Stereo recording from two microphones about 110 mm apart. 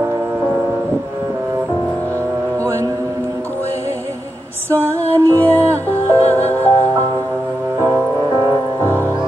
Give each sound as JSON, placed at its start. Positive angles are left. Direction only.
{"t": 4.6, "sound": "music", "side_deg": -25}
{"t": 6.0, "sound": "music", "side_deg": 15}